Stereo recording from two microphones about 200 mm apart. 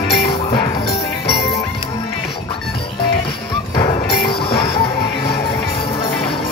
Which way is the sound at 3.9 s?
25° left (ahead or behind).